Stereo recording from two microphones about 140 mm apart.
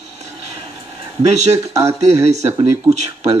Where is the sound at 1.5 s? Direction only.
20° right (ahead or behind).